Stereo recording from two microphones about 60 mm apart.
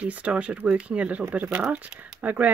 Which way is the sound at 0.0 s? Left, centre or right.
Centre.